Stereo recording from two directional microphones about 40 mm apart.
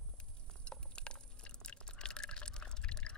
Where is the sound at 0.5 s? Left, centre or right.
Left.